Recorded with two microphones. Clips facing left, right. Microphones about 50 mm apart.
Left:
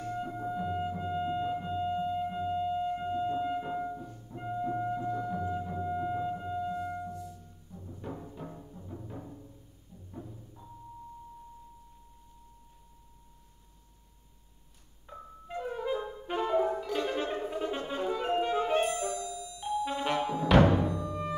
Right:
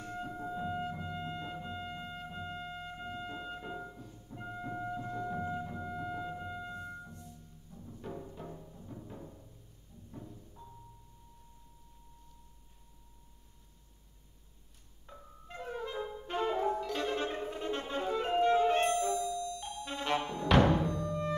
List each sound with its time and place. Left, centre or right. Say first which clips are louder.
0.3 s music: left 1 dB; centre
5.5 s music: left 4 dB; centre
5.8 s music: left 7 dB; centre
9.1 s timpani: left 4 dB; centre
10.1 s music: left 3 dB; centre
15.0 s music: left 7 dB; centre